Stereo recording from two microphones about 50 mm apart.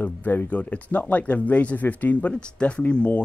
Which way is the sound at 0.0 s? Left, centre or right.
Left.